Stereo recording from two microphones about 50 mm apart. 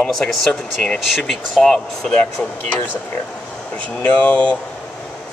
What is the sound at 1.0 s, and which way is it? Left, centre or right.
Speech, centre.